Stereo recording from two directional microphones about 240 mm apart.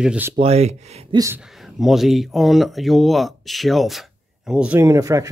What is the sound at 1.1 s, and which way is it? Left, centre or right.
Speech, centre.